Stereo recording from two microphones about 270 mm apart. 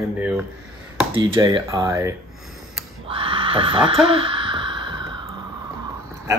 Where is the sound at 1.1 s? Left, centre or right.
Centre.